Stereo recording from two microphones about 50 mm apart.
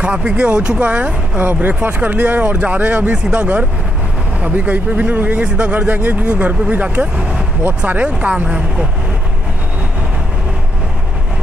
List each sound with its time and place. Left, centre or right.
0.0 s speech: right
1.4 s speech: right